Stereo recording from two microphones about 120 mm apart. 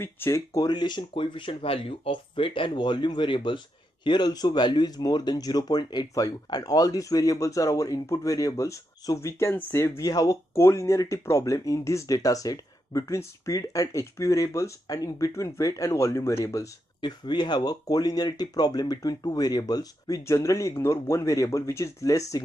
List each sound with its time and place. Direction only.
0.0 s speech: 20° left (ahead or behind)
17.0 s speech: 40° left (ahead or behind)